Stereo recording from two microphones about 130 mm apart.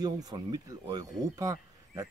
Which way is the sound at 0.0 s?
30° right (ahead or behind).